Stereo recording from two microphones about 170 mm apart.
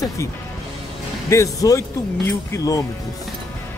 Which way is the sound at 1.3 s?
20° left (ahead or behind).